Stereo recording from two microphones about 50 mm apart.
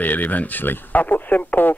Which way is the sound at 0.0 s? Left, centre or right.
Left.